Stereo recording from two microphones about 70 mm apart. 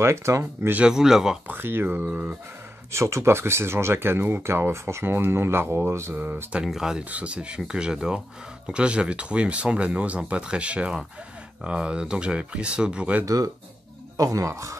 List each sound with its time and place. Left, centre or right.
0.0 s speech: right
0.7 s speech: centre
1.5 s speech: right
2.9 s speech: right
6.6 s speech: centre
13.2 s speech: right